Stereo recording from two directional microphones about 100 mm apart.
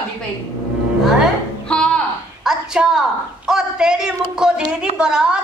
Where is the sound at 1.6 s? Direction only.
10° left (ahead or behind).